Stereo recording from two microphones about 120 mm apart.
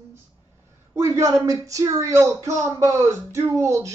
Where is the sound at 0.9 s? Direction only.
25° right (ahead or behind).